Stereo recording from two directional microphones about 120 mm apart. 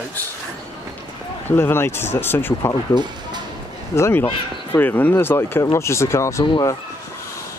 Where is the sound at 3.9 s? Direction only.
20° left (ahead or behind).